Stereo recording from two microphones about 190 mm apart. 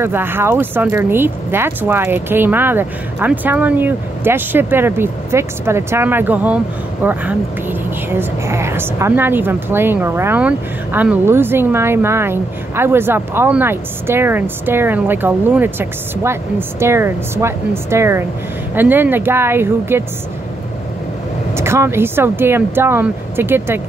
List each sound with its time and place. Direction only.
0.0 s a woman's voice: 10° right (ahead or behind)
8.1 s a woman's voice: 15° right (ahead or behind)
21.5 s a woman's voice: 15° right (ahead or behind)